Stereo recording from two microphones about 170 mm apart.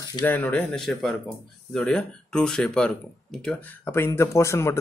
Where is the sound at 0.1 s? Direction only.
15° left (ahead or behind).